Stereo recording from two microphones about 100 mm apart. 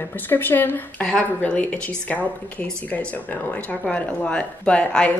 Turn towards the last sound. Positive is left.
turn(degrees=10)  # may be behind; listen again after turning